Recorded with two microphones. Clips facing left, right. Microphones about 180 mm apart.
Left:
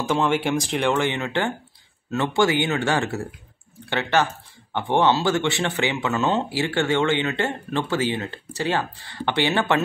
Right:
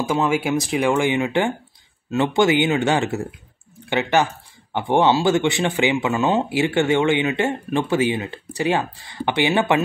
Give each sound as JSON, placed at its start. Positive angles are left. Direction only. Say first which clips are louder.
{"t": 0.0, "sound": "speech", "louder": "right 1 dB", "side_deg": -5}